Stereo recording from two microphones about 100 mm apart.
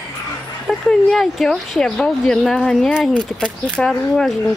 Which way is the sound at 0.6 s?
Centre (ahead or behind).